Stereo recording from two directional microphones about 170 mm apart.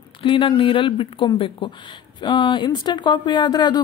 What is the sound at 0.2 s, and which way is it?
Speech, 30° left (ahead or behind).